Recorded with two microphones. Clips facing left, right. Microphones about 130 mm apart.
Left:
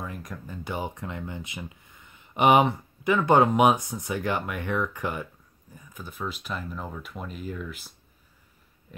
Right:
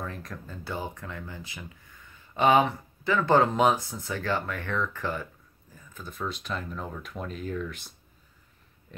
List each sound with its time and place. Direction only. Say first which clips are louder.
0.0 s speech: even; 10° left (ahead or behind)